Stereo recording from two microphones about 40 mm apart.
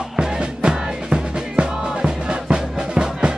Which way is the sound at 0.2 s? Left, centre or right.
Right.